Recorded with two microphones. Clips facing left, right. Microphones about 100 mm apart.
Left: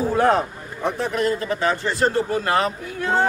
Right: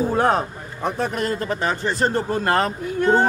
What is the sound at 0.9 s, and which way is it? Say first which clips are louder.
Speech: left 2 dB; 45° right (ahead or behind).